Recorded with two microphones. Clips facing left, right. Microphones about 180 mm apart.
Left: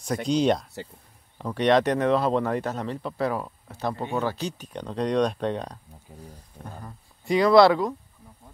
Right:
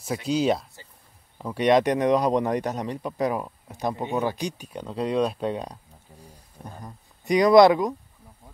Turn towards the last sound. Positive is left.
turn(degrees=-15)  # may be behind; listen again after turning